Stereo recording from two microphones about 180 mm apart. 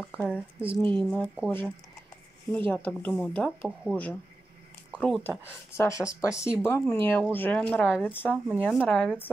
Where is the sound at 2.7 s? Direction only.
10° left (ahead or behind).